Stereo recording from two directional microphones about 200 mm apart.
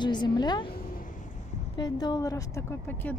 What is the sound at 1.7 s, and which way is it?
A woman's voice, 20° left (ahead or behind).